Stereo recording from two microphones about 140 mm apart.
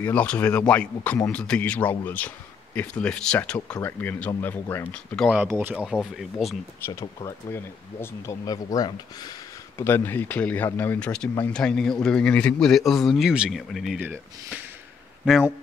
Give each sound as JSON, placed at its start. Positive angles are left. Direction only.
{"t": 0.0, "sound": "speech", "side_deg": 10}
{"t": 5.1, "sound": "speech", "side_deg": 0}
{"t": 5.4, "sound": "speech", "side_deg": -15}
{"t": 6.9, "sound": "speech", "side_deg": 25}
{"t": 9.8, "sound": "speech", "side_deg": 15}
{"t": 13.9, "sound": "speech", "side_deg": -15}
{"t": 15.2, "sound": "speech", "side_deg": 0}